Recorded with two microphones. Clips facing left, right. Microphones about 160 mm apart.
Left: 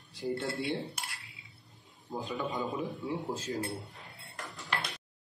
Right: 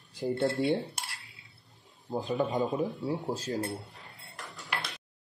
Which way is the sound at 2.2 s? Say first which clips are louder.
Right 6 dB; 40° right (ahead or behind).